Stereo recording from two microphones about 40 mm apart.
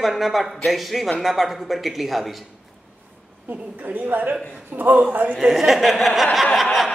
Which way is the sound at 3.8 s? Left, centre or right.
Right.